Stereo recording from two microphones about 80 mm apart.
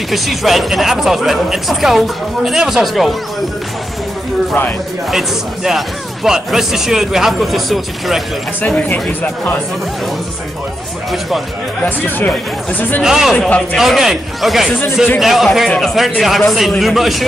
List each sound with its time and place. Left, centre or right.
0.1 s speech: centre
5.1 s speech: centre
8.5 s speech: centre
11.1 s speech: centre
11.8 s speech: left
13.0 s speech: centre